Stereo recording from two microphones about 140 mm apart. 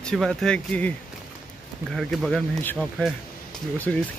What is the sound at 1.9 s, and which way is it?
Speech, 5° left (ahead or behind).